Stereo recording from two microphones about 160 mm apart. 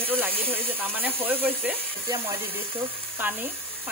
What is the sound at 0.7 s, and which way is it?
Speech, 10° right (ahead or behind).